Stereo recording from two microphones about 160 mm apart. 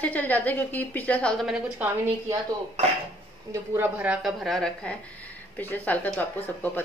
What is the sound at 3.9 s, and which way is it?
A woman's voice, 5° right (ahead or behind).